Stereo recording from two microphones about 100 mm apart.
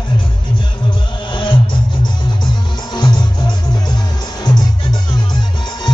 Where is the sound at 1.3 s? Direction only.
50° left (ahead or behind).